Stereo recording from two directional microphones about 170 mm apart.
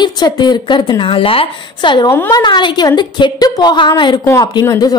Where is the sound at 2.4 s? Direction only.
25° left (ahead or behind).